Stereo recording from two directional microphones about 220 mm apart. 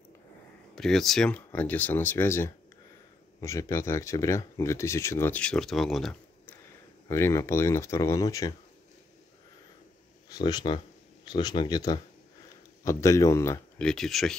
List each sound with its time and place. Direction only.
0.7 s speech: centre (ahead or behind)
7.1 s speech: 10° left (ahead or behind)
10.3 s speech: 20° left (ahead or behind); by 14.3 s centre (ahead or behind)